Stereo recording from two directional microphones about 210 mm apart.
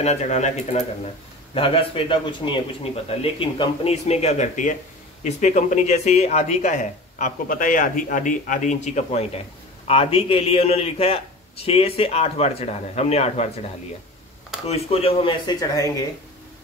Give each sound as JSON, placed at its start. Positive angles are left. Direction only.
{"t": 0.0, "sound": "a man's voice", "side_deg": 30}
{"t": 14.7, "sound": "a man's voice", "side_deg": 30}